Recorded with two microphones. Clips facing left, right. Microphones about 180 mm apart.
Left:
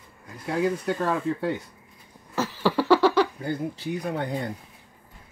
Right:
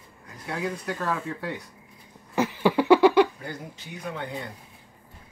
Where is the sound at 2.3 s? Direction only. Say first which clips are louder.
Right 2 dB; 15° right (ahead or behind).